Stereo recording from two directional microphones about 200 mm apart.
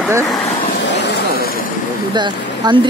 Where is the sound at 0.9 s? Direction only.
60° left (ahead or behind).